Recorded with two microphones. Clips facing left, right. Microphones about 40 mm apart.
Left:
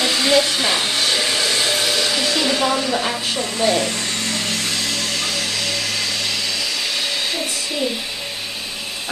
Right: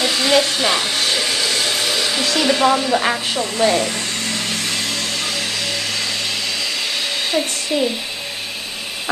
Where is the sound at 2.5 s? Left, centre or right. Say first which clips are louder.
Right 4 dB; centre.